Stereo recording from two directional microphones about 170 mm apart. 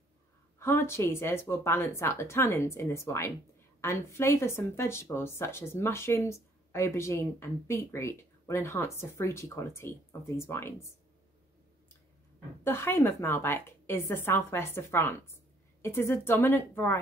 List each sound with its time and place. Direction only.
0.6 s speech: 15° left (ahead or behind)
12.6 s speech: 15° left (ahead or behind)